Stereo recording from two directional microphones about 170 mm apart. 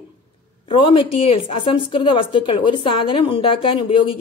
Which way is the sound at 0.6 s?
30° left (ahead or behind).